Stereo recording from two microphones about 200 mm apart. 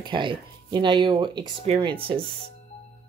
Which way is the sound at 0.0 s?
25° right (ahead or behind).